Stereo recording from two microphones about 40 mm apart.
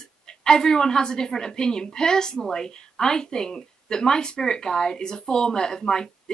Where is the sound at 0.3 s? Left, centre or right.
Centre.